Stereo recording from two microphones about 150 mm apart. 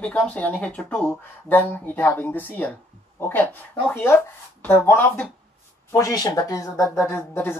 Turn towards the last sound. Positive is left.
turn(degrees=15)  # may be behind; listen again after turning